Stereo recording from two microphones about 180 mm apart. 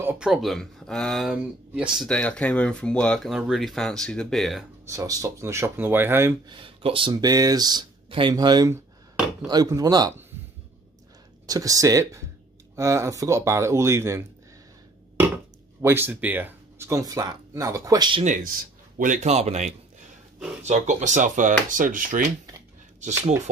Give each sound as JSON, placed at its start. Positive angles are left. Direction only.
{"t": 0.0, "sound": "speech", "side_deg": -5}
{"t": 4.8, "sound": "speech", "side_deg": -20}
{"t": 6.4, "sound": "speech", "side_deg": -30}
{"t": 11.4, "sound": "speech", "side_deg": -20}
{"t": 15.8, "sound": "speech", "side_deg": -10}
{"t": 18.2, "sound": "speech", "side_deg": -45}